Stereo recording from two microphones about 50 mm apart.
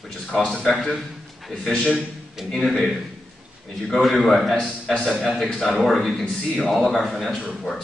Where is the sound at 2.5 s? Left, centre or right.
Centre.